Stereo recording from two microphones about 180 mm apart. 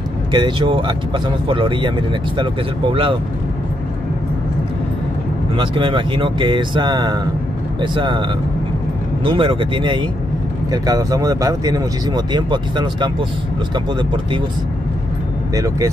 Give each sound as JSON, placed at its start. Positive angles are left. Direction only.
{"t": 0.3, "sound": "speech", "side_deg": -25}
{"t": 5.6, "sound": "speech", "side_deg": -30}
{"t": 15.5, "sound": "speech", "side_deg": -20}